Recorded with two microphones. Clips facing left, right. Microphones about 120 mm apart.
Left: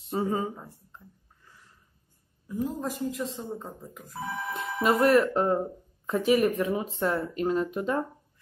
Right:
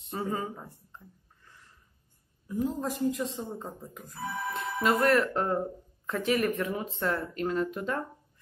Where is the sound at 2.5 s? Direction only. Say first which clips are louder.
Even; centre (ahead or behind).